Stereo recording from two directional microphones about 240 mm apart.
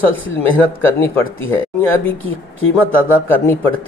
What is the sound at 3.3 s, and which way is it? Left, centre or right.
Speech, centre.